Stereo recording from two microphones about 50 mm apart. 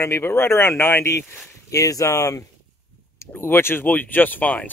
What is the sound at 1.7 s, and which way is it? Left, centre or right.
Speech, left.